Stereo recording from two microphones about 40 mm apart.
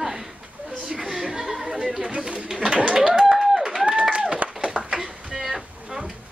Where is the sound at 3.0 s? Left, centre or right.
Centre.